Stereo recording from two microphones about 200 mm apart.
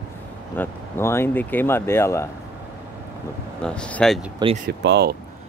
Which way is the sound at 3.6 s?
5° left (ahead or behind).